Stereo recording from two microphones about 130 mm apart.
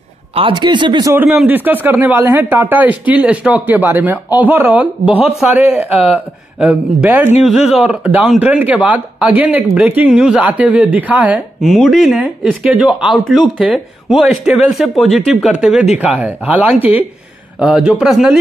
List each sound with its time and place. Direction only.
0.3 s speech: 40° right (ahead or behind)
1.1 s speech: 10° right (ahead or behind)
7.4 s speech: 5° right (ahead or behind)
11.6 s speech: centre (ahead or behind)